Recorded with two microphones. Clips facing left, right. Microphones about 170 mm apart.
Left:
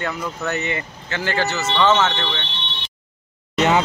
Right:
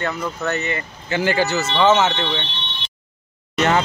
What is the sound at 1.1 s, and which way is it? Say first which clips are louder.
Speech: right 4 dB; 15° right (ahead or behind).